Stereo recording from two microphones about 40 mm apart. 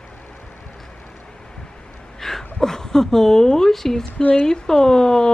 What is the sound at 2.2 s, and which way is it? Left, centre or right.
A woman's voice, centre.